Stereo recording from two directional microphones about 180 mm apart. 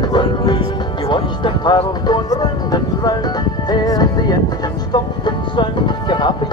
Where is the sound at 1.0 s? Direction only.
25° left (ahead or behind).